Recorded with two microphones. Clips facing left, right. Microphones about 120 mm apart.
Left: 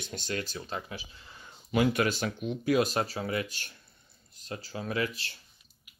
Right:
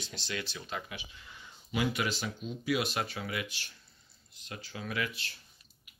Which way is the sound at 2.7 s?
40° left (ahead or behind).